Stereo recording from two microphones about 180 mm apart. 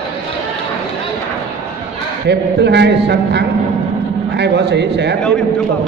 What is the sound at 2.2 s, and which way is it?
A man's voice, 70° right (ahead or behind).